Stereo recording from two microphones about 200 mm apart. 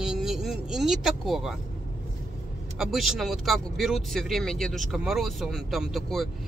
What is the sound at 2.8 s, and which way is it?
Speech, centre (ahead or behind).